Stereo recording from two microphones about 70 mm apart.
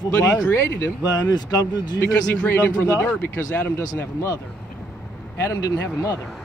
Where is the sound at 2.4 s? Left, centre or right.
Left.